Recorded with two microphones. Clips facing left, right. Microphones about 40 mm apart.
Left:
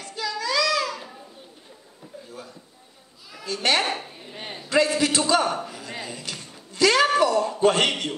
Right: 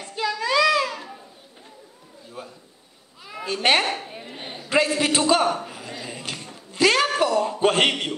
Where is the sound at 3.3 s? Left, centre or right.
Right.